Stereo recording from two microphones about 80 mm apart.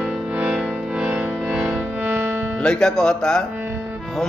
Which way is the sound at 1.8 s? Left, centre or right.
Right.